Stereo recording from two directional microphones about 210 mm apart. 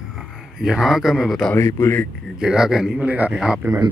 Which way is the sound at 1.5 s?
15° left (ahead or behind).